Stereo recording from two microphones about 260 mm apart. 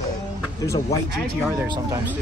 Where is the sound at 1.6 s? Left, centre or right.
Centre.